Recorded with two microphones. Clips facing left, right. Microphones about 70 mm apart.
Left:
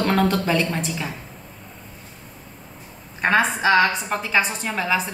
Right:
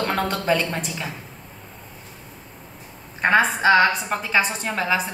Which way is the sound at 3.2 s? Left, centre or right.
Centre.